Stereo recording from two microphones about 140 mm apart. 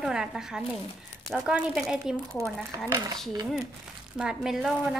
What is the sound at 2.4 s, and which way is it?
Speech, 20° right (ahead or behind).